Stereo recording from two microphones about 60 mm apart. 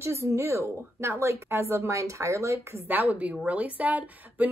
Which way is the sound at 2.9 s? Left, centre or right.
Right.